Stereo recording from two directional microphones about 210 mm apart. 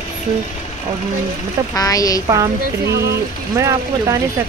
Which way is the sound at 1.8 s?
15° left (ahead or behind).